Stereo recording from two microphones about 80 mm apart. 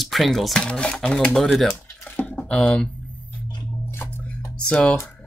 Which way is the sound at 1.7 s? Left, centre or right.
Left.